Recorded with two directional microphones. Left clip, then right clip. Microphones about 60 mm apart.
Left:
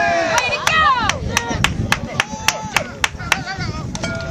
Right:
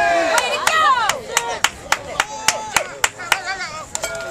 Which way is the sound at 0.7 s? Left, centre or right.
Centre.